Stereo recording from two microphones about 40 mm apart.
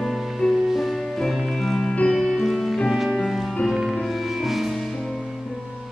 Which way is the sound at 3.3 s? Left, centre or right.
Centre.